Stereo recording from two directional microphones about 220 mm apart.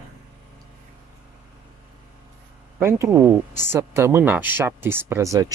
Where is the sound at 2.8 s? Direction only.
10° right (ahead or behind).